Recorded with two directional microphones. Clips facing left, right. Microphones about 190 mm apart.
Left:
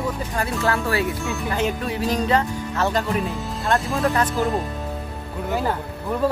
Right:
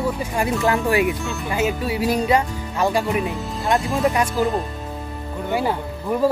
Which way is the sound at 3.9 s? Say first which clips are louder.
Right 2 dB; centre (ahead or behind).